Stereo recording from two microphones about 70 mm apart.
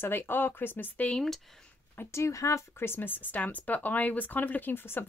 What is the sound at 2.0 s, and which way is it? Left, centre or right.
Speech, left.